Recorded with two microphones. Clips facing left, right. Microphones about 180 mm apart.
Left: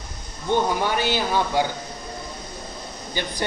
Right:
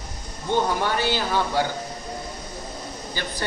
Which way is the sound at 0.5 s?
15° left (ahead or behind).